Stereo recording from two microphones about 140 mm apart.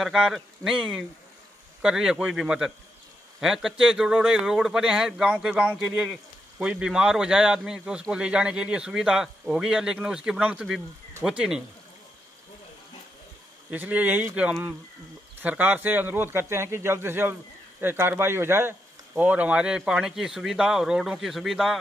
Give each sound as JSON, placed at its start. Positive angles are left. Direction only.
{"t": 0.0, "sound": "speech", "side_deg": 0}
{"t": 13.7, "sound": "a man's voice", "side_deg": -10}